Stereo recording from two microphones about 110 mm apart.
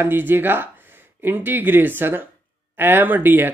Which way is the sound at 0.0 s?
20° right (ahead or behind).